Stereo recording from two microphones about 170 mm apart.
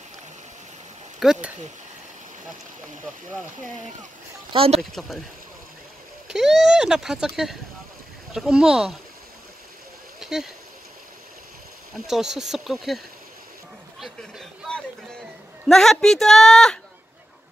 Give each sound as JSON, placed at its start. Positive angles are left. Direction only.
{"t": 1.2, "sound": "speech", "side_deg": -5}
{"t": 4.5, "sound": "speech", "side_deg": -35}
{"t": 6.2, "sound": "speech", "side_deg": 0}
{"t": 10.2, "sound": "speech", "side_deg": -5}
{"t": 11.9, "sound": "speech", "side_deg": 0}